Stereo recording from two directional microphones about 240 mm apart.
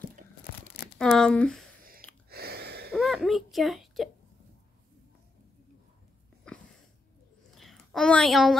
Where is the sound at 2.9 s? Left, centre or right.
Centre.